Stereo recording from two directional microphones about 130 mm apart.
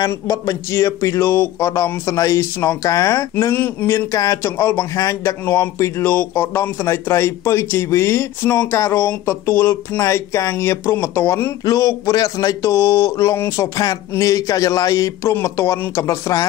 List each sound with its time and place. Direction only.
0.1 s speech: 25° left (ahead or behind)